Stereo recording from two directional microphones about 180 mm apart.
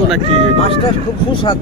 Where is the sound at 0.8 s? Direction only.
25° left (ahead or behind).